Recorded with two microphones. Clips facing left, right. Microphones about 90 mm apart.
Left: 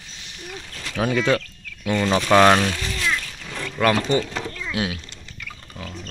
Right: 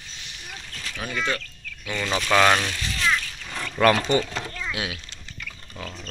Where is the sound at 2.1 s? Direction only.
25° left (ahead or behind).